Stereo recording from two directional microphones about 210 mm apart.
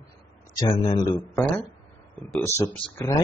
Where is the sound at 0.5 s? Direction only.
20° left (ahead or behind).